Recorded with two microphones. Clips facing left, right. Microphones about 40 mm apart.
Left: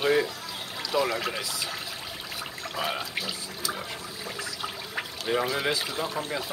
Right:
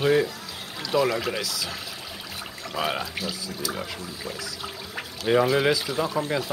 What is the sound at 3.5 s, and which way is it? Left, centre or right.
Toilet flush, centre.